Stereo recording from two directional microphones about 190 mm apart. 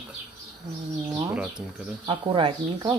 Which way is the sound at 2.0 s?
25° right (ahead or behind).